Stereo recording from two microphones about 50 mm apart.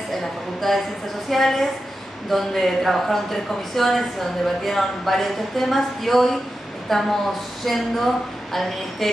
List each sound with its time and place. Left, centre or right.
0.1 s speech: centre